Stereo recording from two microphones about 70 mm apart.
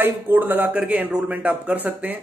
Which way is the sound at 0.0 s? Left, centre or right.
Right.